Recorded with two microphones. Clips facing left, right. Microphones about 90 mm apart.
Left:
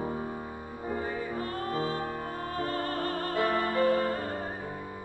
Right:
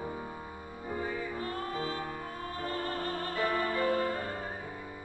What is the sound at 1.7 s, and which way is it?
Music, 40° left (ahead or behind).